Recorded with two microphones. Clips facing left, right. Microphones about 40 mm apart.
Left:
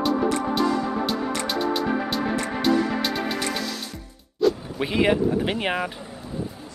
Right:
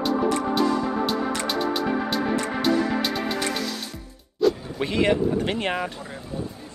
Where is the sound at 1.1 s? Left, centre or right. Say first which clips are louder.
Right 1 dB; centre.